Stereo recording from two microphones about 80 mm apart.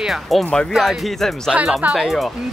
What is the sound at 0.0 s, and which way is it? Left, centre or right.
Speech, centre.